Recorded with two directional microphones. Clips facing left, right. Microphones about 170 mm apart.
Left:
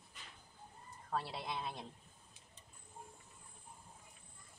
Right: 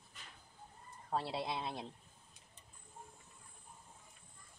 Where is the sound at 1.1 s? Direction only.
25° right (ahead or behind).